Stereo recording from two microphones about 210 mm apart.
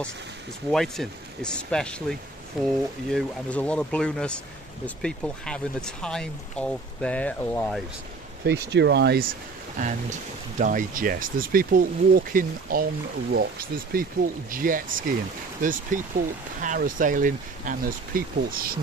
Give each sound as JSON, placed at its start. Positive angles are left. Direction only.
{"t": 0.7, "sound": "speech", "side_deg": 0}
{"t": 8.5, "sound": "speech", "side_deg": -55}
{"t": 9.8, "sound": "speech", "side_deg": -35}